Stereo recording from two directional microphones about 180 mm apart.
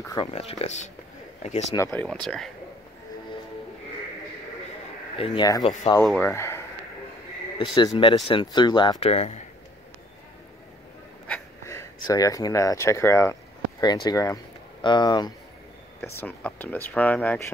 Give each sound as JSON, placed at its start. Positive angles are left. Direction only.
{"t": 0.0, "sound": "speech", "side_deg": 20}
{"t": 0.3, "sound": "speech", "side_deg": 35}
{"t": 1.8, "sound": "speech", "side_deg": 10}
{"t": 5.1, "sound": "speech", "side_deg": 30}
{"t": 6.0, "sound": "speech", "side_deg": 5}
{"t": 7.7, "sound": "speech", "side_deg": 20}
{"t": 11.6, "sound": "speech", "side_deg": 15}
{"t": 16.0, "sound": "speech", "side_deg": 10}